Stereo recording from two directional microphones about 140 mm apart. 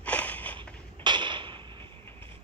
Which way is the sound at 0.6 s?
35° right (ahead or behind).